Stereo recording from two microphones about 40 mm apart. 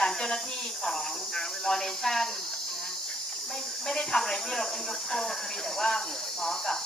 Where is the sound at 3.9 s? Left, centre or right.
Centre.